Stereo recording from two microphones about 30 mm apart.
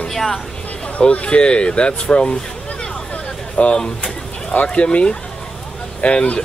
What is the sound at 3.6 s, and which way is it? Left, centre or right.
Speech, left.